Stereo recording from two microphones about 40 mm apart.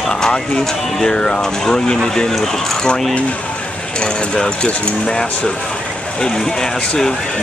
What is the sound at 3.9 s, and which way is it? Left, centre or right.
Speech, left.